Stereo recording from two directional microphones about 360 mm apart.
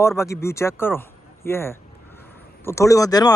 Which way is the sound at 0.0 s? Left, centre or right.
Centre.